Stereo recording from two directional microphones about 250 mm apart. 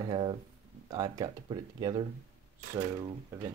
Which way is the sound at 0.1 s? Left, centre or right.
Centre.